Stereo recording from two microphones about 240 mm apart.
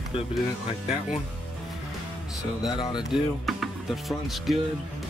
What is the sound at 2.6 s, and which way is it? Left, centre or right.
Speech, centre.